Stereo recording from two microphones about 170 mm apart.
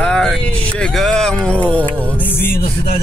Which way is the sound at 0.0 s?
5° left (ahead or behind).